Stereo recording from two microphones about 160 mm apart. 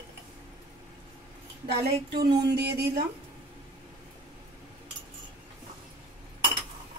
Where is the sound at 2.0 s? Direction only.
90° right.